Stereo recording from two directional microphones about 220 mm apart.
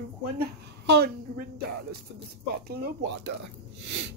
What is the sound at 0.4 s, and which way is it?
Speech, 45° right (ahead or behind).